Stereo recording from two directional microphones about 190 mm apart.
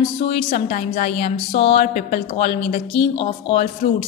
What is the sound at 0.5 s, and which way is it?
A woman's voice, 45° left (ahead or behind).